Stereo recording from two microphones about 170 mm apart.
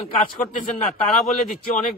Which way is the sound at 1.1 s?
45° left (ahead or behind).